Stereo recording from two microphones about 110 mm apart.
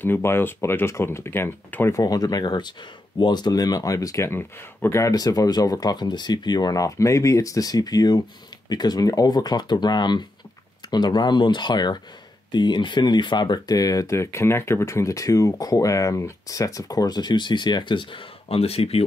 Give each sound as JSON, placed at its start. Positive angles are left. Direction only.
{"t": 0.0, "sound": "speech", "side_deg": 20}
{"t": 2.0, "sound": "speech", "side_deg": 35}